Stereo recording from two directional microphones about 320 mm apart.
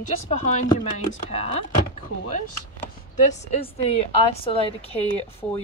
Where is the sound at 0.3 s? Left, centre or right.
Left.